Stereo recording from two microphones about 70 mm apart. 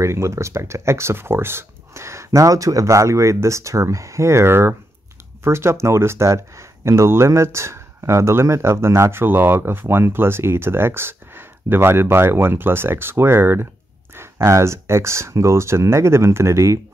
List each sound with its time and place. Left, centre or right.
0.0 s speech: right